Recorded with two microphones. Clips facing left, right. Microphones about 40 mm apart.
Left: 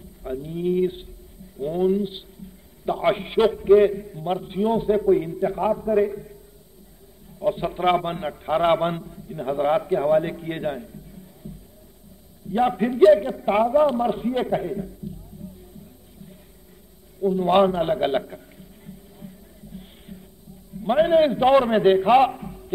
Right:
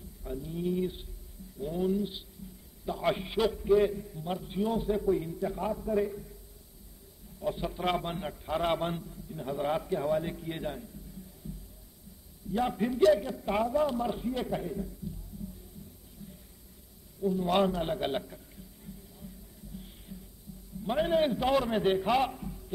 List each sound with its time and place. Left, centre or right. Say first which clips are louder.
0.2 s a man's voice: left 8 dB; left
7.3 s a man's voice: left 9 dB; left
12.5 s a man's voice: left 9 dB; left
17.2 s a man's voice: left 9 dB; left
19.1 s music: left 6 dB; left
20.8 s a man's voice: left 10 dB; left